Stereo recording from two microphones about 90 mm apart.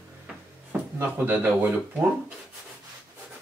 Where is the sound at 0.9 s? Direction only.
20° right (ahead or behind).